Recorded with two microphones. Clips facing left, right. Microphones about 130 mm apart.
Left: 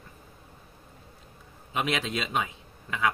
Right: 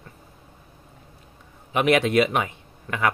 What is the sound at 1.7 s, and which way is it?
A man's voice, 65° right (ahead or behind).